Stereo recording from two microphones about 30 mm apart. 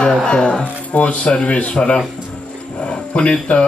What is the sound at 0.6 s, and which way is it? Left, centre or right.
Speech, left.